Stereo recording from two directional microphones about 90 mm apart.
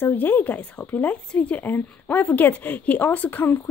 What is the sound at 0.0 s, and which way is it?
Speech, 20° left (ahead or behind).